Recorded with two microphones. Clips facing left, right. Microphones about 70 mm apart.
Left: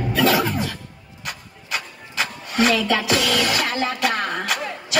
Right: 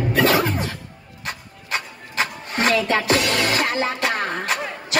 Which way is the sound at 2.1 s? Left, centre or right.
Right.